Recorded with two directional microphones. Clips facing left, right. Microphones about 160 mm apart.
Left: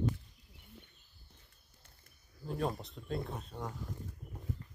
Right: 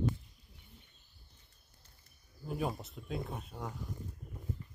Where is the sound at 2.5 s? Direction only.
5° right (ahead or behind).